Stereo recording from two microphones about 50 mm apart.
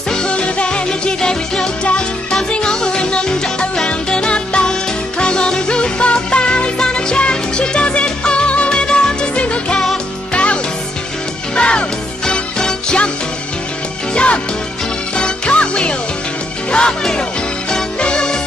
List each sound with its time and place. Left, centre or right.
0.1 s music: centre
14.1 s music: left